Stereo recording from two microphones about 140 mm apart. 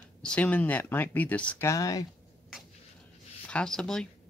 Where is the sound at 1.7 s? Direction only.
25° left (ahead or behind).